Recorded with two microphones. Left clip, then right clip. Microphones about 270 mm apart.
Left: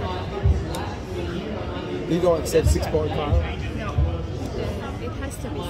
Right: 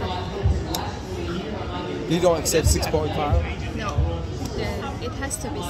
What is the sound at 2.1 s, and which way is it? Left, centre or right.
Speech, right.